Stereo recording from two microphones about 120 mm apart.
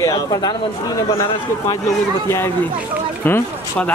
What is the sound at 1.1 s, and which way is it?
Speech, 20° left (ahead or behind).